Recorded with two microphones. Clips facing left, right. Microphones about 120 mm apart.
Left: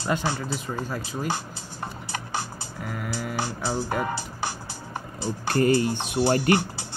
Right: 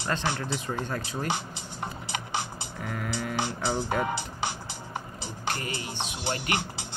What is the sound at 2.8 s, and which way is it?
Speech, 5° left (ahead or behind).